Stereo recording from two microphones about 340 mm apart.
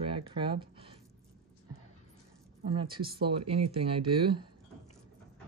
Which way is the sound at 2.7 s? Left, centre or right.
Centre.